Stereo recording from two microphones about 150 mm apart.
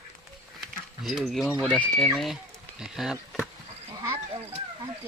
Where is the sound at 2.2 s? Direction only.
5° right (ahead or behind).